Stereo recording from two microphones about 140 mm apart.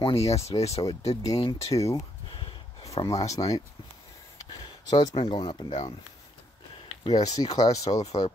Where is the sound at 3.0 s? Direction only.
25° left (ahead or behind).